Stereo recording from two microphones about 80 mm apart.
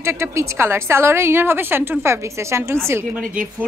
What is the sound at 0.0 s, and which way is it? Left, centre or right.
A woman's voice, right.